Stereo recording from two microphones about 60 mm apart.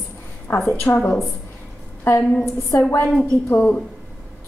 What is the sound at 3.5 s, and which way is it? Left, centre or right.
Speech, centre.